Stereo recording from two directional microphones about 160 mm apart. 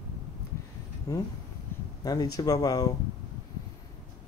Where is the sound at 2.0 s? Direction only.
25° left (ahead or behind).